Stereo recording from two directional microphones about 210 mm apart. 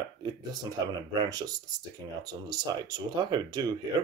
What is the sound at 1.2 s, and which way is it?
Speech, 20° right (ahead or behind).